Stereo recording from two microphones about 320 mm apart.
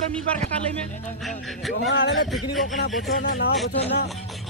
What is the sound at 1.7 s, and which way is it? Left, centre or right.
Speech, left.